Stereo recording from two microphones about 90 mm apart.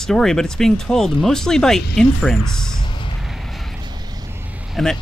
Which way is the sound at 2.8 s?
65° left (ahead or behind).